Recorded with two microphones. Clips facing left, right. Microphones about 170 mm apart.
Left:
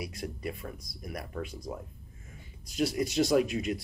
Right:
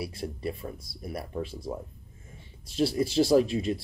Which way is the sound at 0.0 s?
30° right (ahead or behind).